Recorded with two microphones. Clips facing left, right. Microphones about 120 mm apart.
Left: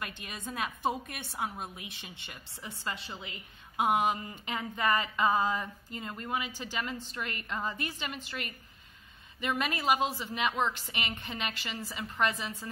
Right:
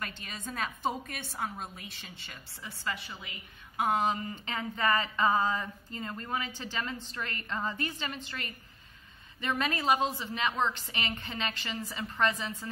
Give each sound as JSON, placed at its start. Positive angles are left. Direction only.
{"t": 0.0, "sound": "a woman's voice", "side_deg": 10}
{"t": 3.7, "sound": "a woman's voice", "side_deg": 15}